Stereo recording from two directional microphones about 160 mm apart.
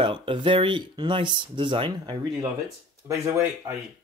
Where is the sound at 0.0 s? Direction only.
35° right (ahead or behind).